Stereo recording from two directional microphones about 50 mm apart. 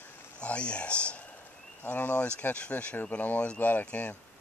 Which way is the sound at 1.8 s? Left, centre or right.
Left.